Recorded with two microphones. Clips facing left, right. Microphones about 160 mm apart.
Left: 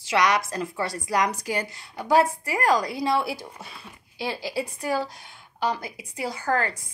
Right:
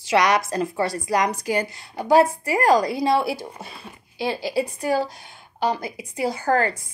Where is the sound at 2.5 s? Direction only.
30° right (ahead or behind).